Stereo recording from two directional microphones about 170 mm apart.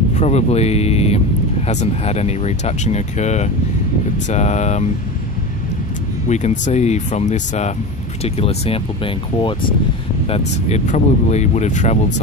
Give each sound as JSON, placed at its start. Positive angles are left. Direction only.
{"t": 0.1, "sound": "speech", "side_deg": 40}
{"t": 6.2, "sound": "speech", "side_deg": 45}